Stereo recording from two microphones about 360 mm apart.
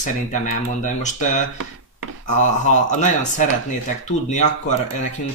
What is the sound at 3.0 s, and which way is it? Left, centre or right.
Speech, left.